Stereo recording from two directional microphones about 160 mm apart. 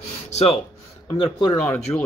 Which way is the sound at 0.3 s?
40° left (ahead or behind).